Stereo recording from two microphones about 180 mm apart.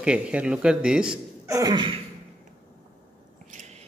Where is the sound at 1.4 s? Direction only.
20° right (ahead or behind).